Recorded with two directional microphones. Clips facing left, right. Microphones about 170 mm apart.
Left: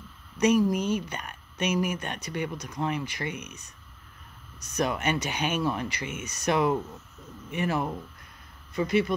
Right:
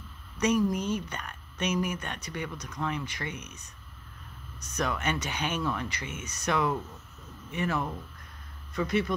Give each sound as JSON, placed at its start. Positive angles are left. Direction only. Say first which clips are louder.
{"t": 0.4, "sound": "speech", "louder": "left 4 dB", "side_deg": 10}
{"t": 2.5, "sound": "speech", "louder": "left 4 dB", "side_deg": 35}
{"t": 2.8, "sound": "speech", "louder": "left 3 dB", "side_deg": 20}
{"t": 4.7, "sound": "speech", "louder": "left 3 dB", "side_deg": 15}
{"t": 5.6, "sound": "speech", "louder": "left 3 dB", "side_deg": 30}
{"t": 5.9, "sound": "speech", "louder": "left 4 dB", "side_deg": 15}
{"t": 8.7, "sound": "speech", "louder": "left 3 dB", "side_deg": 5}